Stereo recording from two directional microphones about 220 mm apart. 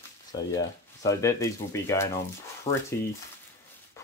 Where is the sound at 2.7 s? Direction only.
30° left (ahead or behind).